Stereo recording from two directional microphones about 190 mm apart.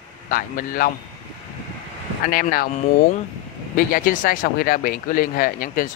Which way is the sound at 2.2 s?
50° left (ahead or behind).